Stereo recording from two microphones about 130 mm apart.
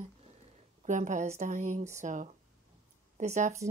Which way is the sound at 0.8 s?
70° right (ahead or behind).